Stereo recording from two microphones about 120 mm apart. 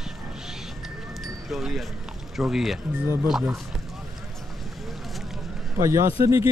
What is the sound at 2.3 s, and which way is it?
Speech, 5° right (ahead or behind).